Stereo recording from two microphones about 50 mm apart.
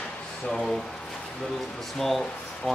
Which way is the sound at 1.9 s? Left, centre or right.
Centre.